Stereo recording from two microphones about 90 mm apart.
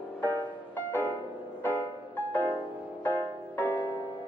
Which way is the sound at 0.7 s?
20° left (ahead or behind).